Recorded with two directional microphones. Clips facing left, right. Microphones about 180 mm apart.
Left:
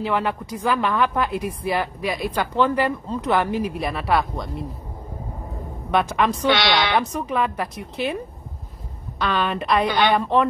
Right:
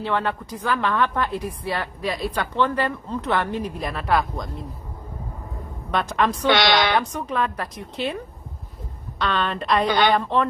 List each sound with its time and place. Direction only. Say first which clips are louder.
0.0 s a woman's voice: left 1 dB; 10° left (ahead or behind)
5.9 s a woman's voice: left 2 dB; 5° left (ahead or behind)
6.5 s speech: right 1 dB; 45° right (ahead or behind)
7.0 s a woman's voice: left 2 dB; 5° left (ahead or behind)
9.2 s a woman's voice: left 1 dB; 5° left (ahead or behind)